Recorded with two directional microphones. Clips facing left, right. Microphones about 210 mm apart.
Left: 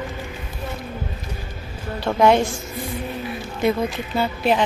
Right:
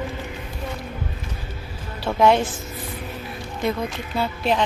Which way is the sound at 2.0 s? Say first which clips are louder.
Left 1 dB; centre (ahead or behind).